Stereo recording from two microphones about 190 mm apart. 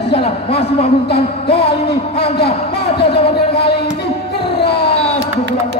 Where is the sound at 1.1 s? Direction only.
65° left (ahead or behind).